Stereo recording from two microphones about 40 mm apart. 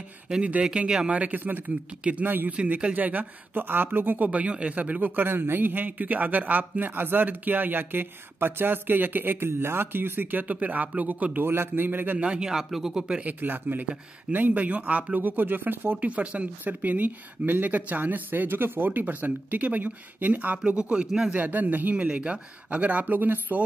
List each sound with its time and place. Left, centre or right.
0.7 s speech: right
1.1 s a man's voice: right
2.9 s speech: right
5.2 s a man's voice: right
11.4 s a man's voice: right
12.2 s speech: right
12.5 s speech: centre
13.2 s speech: right
15.1 s speech: right
16.0 s speech: right
20.5 s speech: right
21.3 s speech: right
21.9 s speech: right